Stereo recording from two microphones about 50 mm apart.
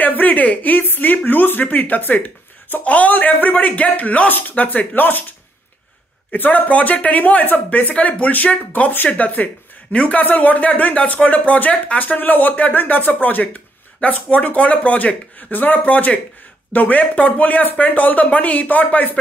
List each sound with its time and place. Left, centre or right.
0.0 s speech: left
4.3 s speech: left
6.3 s speech: left
7.9 s speech: left